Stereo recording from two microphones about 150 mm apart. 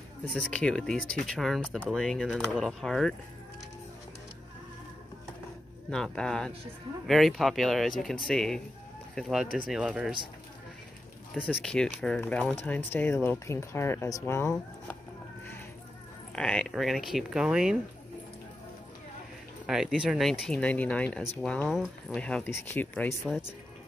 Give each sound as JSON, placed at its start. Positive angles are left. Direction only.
{"t": 0.3, "sound": "speech", "side_deg": 5}
{"t": 5.9, "sound": "speech", "side_deg": 5}
{"t": 11.4, "sound": "speech", "side_deg": 5}
{"t": 16.3, "sound": "speech", "side_deg": 5}
{"t": 19.6, "sound": "speech", "side_deg": -5}